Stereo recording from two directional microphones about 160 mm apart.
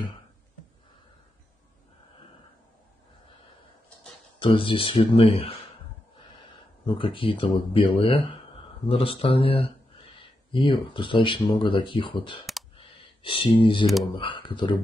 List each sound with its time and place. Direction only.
4.4 s speech: 30° left (ahead or behind)
6.9 s speech: 30° left (ahead or behind)
12.7 s a sound: 35° left (ahead or behind)
14.1 s speech: 30° left (ahead or behind)